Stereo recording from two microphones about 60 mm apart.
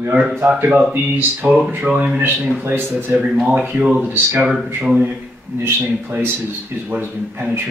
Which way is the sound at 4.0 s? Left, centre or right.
Right.